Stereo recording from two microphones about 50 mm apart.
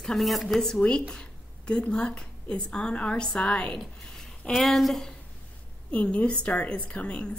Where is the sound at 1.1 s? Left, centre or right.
Centre.